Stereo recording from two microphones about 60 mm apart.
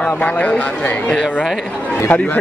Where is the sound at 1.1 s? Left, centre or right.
Centre.